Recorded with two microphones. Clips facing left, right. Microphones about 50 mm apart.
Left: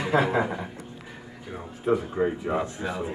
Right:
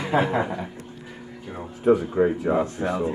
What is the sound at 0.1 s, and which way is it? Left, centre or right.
Speech, right.